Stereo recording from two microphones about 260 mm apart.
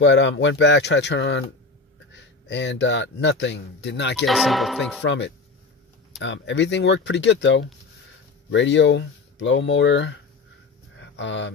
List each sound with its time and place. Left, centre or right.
0.0 s speech: left
4.3 s speech: centre
5.0 s speech: left
11.0 s a sound: left